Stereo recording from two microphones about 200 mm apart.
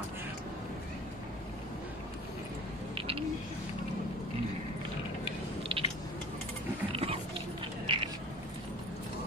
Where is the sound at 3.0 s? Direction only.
25° right (ahead or behind).